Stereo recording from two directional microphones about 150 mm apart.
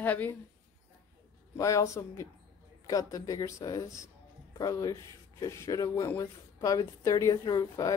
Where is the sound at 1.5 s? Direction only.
20° left (ahead or behind).